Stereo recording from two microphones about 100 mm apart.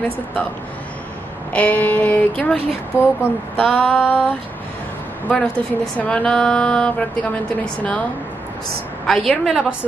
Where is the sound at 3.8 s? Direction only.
10° right (ahead or behind).